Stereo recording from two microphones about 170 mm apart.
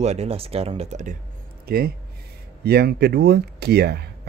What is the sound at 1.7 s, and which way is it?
Speech, 65° right (ahead or behind).